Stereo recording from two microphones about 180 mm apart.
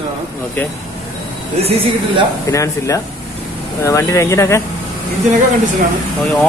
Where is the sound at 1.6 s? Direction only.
35° right (ahead or behind).